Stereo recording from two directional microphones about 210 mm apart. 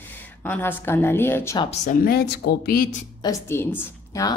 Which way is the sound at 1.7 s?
35° left (ahead or behind).